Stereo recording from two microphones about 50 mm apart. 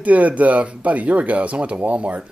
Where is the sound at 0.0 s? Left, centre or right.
Right.